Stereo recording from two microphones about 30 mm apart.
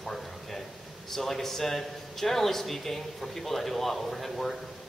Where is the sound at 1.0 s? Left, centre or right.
Centre.